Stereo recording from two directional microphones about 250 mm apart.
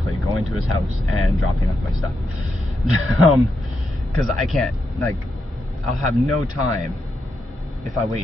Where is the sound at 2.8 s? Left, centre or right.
Centre.